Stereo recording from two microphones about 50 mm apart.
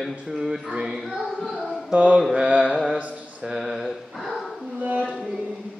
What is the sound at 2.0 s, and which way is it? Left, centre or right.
Mantra, right.